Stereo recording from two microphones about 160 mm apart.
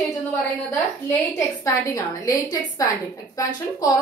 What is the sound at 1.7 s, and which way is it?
A woman's voice, 20° left (ahead or behind).